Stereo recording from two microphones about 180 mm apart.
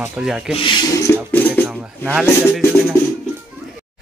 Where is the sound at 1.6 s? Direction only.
5° right (ahead or behind).